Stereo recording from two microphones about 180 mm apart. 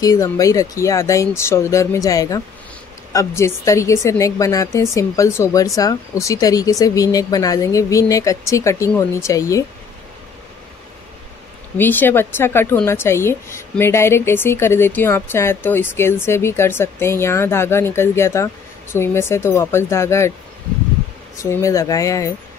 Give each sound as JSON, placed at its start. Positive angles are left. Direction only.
{"t": 0.0, "sound": "speech", "side_deg": 20}
{"t": 11.8, "sound": "speech", "side_deg": 10}
{"t": 21.4, "sound": "speech", "side_deg": 15}